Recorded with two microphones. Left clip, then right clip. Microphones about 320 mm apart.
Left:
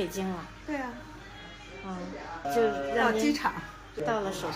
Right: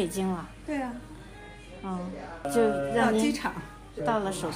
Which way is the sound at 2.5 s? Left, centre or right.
Right.